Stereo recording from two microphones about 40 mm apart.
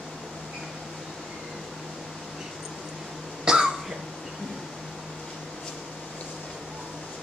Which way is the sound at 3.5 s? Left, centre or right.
Centre.